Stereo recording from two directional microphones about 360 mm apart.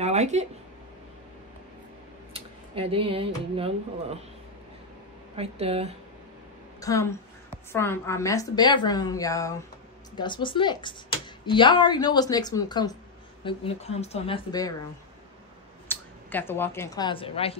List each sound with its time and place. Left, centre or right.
0.0 s speech: centre
2.3 s a sound: centre
3.5 s speech: centre
5.3 s speech: centre
6.8 s speech: centre
15.9 s speech: centre